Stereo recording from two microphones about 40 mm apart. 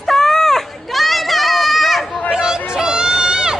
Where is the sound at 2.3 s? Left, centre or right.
Centre.